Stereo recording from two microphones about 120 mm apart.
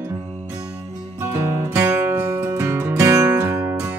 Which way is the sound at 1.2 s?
20° right (ahead or behind).